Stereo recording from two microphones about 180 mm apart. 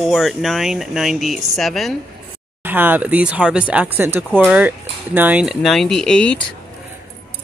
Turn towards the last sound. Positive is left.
turn(degrees=5)  # may be behind; listen again after turning